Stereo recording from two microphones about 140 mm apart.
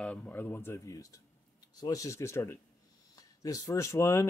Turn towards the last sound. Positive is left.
turn(degrees=20)  # may be behind; listen again after turning